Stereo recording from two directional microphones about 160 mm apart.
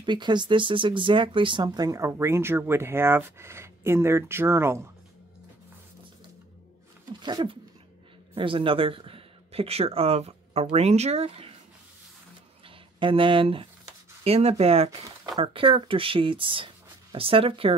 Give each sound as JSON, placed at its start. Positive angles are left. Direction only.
{"t": 0.0, "sound": "speech", "side_deg": -30}
{"t": 7.2, "sound": "speech", "side_deg": -30}
{"t": 12.6, "sound": "speech", "side_deg": -35}